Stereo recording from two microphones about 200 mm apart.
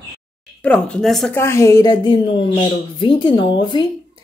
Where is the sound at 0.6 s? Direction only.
5° left (ahead or behind).